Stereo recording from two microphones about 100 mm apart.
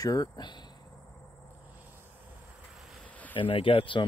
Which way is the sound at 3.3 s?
60° left (ahead or behind).